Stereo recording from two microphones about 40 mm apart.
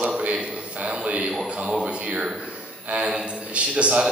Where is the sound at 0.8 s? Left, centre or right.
Right.